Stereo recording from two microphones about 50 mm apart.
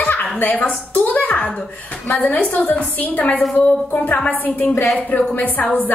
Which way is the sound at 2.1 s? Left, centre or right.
Left.